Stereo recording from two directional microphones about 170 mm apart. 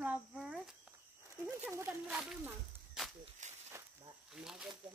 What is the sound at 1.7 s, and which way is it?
Speech, 15° right (ahead or behind).